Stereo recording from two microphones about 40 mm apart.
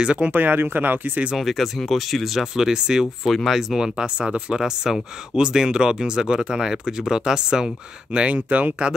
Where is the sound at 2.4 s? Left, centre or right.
Centre.